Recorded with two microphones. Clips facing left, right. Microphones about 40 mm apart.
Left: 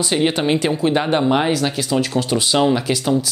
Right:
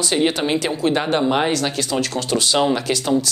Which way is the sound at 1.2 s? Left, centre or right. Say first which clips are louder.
Left 2 dB; centre.